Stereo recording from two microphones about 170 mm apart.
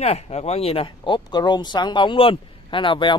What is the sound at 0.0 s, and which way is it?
A man's voice, 40° left (ahead or behind).